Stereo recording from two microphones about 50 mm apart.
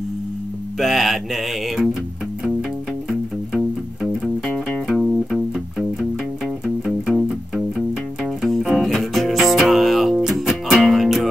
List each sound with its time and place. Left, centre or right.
0.7 s music: centre
3.1 s music: centre
4.5 s music: centre
5.3 s music: centre